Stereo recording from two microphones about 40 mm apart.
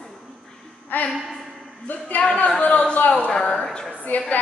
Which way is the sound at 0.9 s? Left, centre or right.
Left.